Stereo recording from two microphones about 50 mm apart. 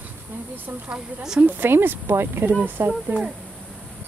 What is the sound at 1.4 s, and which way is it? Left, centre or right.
Speech, right.